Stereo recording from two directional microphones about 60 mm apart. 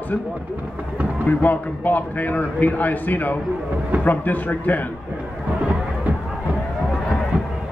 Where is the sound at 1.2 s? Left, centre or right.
Left.